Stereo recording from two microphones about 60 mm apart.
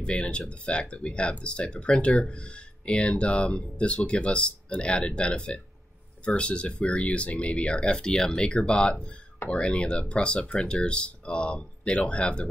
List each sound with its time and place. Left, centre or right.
0.1 s speech: centre